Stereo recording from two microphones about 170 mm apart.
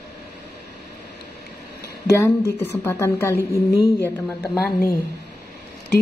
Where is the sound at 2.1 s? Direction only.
15° left (ahead or behind).